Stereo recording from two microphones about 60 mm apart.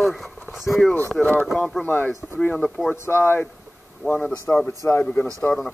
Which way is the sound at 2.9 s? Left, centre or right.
Left.